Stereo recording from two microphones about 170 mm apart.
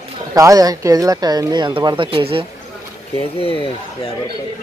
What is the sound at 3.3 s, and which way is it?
Speech, 30° left (ahead or behind).